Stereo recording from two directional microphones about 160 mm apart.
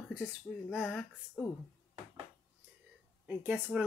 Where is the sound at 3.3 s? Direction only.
10° right (ahead or behind).